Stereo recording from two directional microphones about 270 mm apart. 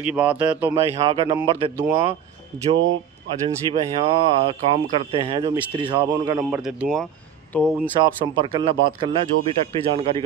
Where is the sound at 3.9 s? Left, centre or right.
Centre.